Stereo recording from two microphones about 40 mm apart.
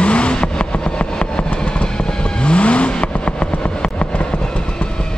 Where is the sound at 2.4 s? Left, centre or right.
Left.